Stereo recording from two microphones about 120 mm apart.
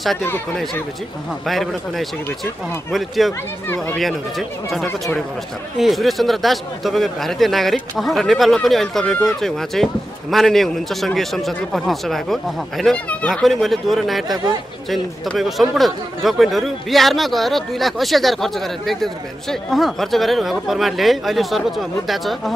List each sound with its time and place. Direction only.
1.4 s speech: centre (ahead or behind)
3.6 s speech: 15° left (ahead or behind)
4.0 s speech: centre (ahead or behind)